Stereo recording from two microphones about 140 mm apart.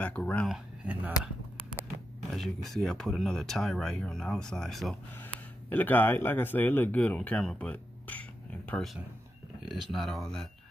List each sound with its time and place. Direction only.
0.0 s speech: 10° left (ahead or behind)
0.8 s speech: 10° right (ahead or behind)
2.3 s speech: centre (ahead or behind)
5.7 s speech: 15° left (ahead or behind)